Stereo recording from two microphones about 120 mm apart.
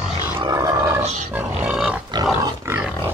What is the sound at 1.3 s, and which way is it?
Pig, 15° right (ahead or behind).